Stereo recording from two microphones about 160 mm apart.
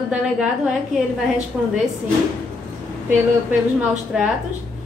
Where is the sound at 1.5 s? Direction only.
5° right (ahead or behind).